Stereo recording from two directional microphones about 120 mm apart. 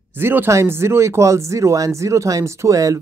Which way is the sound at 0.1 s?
20° right (ahead or behind).